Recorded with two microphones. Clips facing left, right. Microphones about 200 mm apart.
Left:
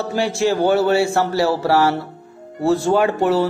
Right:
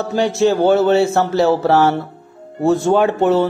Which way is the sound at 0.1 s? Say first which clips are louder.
Right 4 dB; 20° right (ahead or behind).